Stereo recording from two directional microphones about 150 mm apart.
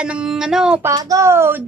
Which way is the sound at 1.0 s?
20° right (ahead or behind).